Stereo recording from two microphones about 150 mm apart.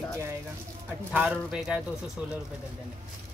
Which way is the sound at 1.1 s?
5° right (ahead or behind).